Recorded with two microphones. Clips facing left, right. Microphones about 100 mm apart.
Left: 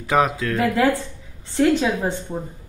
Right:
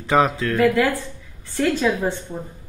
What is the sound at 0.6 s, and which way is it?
A woman's voice, 25° left (ahead or behind).